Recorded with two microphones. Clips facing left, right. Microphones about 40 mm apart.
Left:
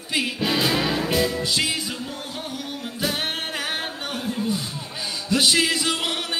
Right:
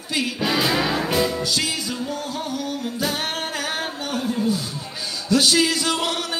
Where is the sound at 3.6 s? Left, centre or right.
Centre.